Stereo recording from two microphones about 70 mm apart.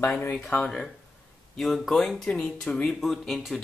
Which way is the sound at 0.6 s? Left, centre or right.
Centre.